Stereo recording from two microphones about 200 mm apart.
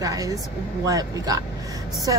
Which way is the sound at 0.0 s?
15° right (ahead or behind).